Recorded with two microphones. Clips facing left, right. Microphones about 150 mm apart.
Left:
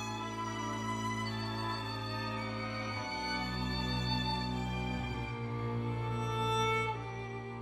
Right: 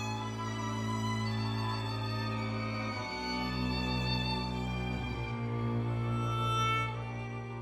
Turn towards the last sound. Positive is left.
turn(degrees=35)  # may be behind; listen again after turning